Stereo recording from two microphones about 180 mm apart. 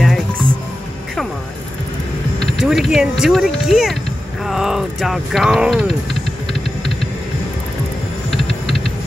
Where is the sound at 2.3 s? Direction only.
Centre (ahead or behind).